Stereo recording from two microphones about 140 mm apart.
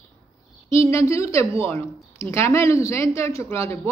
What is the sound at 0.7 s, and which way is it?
A woman's voice, 20° left (ahead or behind).